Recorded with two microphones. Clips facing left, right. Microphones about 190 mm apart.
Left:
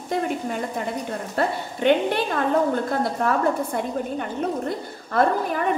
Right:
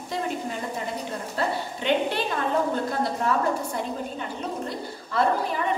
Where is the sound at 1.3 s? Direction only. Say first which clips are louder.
Left 3 dB; 55° left (ahead or behind).